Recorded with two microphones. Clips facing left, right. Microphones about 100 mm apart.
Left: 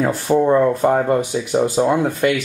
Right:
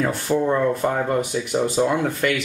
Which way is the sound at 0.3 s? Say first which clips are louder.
Left 6 dB; 25° left (ahead or behind).